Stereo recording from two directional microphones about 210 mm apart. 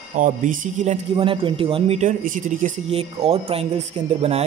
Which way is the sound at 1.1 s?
25° right (ahead or behind).